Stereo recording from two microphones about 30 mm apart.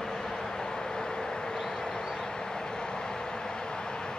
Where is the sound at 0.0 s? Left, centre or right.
Centre.